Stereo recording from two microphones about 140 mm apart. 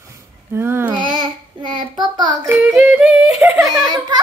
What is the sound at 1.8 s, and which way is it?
Speech, 30° right (ahead or behind).